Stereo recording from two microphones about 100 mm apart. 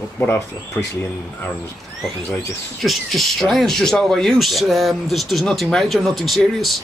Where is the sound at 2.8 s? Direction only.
Centre (ahead or behind).